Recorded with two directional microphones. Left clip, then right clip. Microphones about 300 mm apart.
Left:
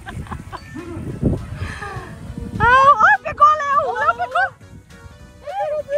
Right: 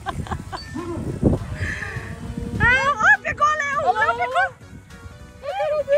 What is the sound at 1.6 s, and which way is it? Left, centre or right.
Crow, centre.